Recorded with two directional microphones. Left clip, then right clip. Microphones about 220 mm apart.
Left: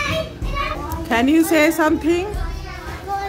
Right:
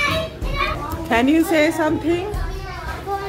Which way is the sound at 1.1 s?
10° left (ahead or behind).